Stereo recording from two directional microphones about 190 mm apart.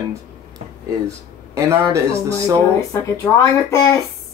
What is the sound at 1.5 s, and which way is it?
Speech, 15° right (ahead or behind).